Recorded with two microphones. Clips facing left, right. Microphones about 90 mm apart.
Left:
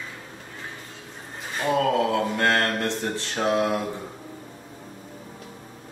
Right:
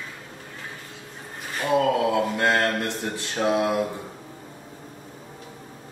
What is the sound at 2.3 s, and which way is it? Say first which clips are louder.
Mantra: right 1 dB; 15° right (ahead or behind).